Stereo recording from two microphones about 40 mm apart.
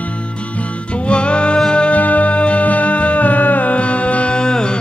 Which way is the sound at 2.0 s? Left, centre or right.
Left.